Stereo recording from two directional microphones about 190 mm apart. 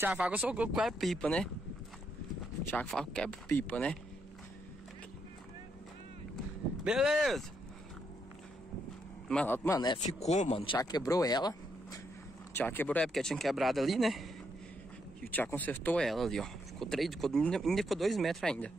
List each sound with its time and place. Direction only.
0.0 s speech: 5° right (ahead or behind)
2.6 s speech: 10° left (ahead or behind)
6.8 s speech: 5° right (ahead or behind)
9.3 s speech: 5° left (ahead or behind)
9.9 s speech: 35° left (ahead or behind); by 12.0 s 20° left (ahead or behind)
12.5 s speech: 10° left (ahead or behind)
15.3 s speech: 10° left (ahead or behind)